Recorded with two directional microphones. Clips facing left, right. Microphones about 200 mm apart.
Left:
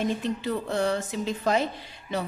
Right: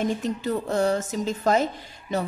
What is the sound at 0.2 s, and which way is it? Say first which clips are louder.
A woman's voice: right 2 dB; 45° right (ahead or behind).